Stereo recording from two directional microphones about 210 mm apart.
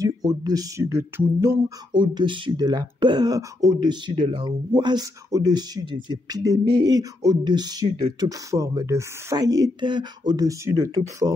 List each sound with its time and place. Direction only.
0.0 s speech: 15° right (ahead or behind)
2.0 s speech: 20° right (ahead or behind)